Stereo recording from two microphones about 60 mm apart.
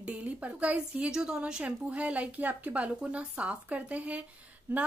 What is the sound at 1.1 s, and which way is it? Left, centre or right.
A woman's voice, centre.